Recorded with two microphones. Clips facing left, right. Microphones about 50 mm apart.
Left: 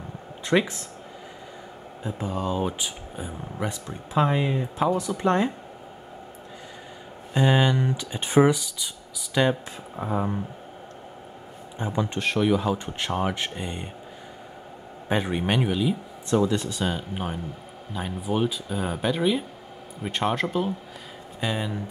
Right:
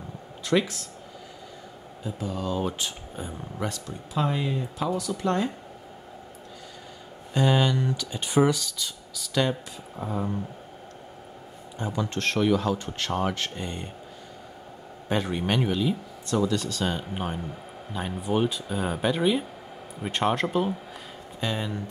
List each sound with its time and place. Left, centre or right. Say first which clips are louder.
0.5 s speech: left 2 dB; left
2.0 s speech: left 2 dB; left
2.5 s speech: left 1 dB; centre; by 5.5 s left
7.3 s speech: left 2 dB; centre
11.8 s speech: left 2 dB; left
12.2 s speech: even; centre
15.0 s speech: left 2 dB; centre
16.3 s speech: left 3 dB; left
16.8 s speech: left 1 dB; centre